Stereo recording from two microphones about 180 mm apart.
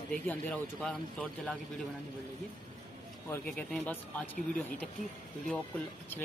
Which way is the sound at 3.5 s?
5° left (ahead or behind).